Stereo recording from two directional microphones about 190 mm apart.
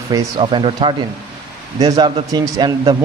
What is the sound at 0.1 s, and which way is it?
Speech, 25° right (ahead or behind).